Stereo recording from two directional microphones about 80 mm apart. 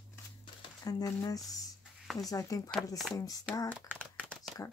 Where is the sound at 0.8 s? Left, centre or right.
Left.